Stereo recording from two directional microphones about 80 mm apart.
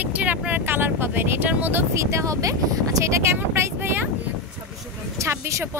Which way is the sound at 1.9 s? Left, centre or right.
Right.